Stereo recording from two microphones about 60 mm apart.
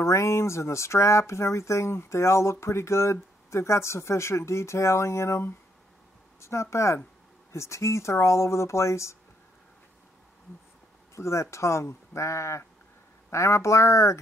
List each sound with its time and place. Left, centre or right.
0.0 s speech: left
11.1 s speech: left